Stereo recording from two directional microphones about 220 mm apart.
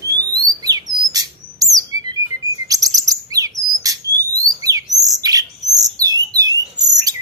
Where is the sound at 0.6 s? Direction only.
15° right (ahead or behind).